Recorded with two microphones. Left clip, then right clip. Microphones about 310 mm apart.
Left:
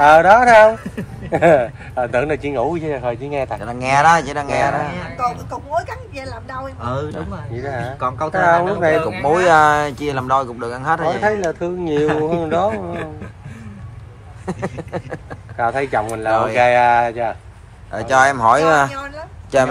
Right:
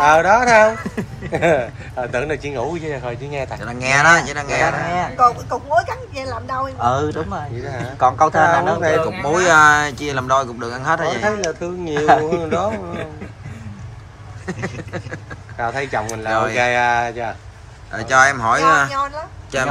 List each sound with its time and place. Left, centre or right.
0.0 s speech: left
3.6 s speech: centre
5.8 s a woman's voice: centre
8.4 s speech: left
9.0 s speech: centre
11.2 s speech: left
14.4 s speech: centre
15.5 s speech: left
17.9 s speech: centre
18.9 s a woman's voice: centre
19.5 s speech: centre